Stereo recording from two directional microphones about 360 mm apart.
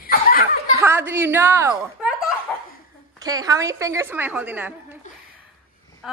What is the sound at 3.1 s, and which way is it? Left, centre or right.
Speech, centre.